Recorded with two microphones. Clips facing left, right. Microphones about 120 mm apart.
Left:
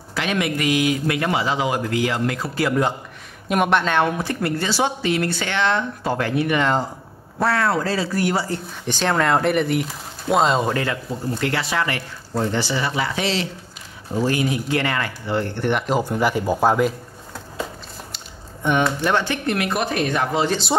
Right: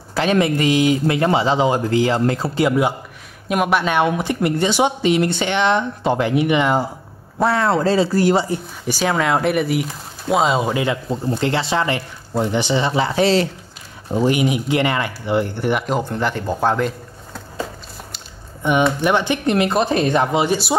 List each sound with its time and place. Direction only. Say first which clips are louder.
0.1 s speech: right 6 dB; 35° right (ahead or behind)
3.4 s a woman's voice: right 1 dB; centre (ahead or behind); by 8.5 s 30° right (ahead or behind)
8.5 s speech: right 3 dB; 10° right (ahead or behind)
10.8 s speech: right 4 dB; 20° right (ahead or behind); by 13.5 s 40° right (ahead or behind)
14.1 s a woman's voice: right 4 dB; 20° right (ahead or behind)
15.9 s speech: left 1 dB; 10° left (ahead or behind)
18.6 s speech: right 3 dB; 10° right (ahead or behind); by 20.2 s 25° right (ahead or behind)
20.3 s a woman's voice: right 3 dB; 10° right (ahead or behind)